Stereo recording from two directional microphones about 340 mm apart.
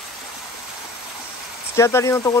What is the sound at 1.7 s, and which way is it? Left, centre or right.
Speech, centre.